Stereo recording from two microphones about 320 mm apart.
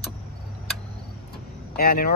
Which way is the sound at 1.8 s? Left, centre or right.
Left.